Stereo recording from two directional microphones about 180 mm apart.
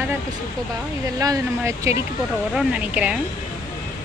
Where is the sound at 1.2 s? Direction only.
20° right (ahead or behind).